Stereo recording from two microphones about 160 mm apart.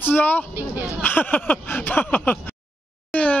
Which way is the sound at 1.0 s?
10° left (ahead or behind).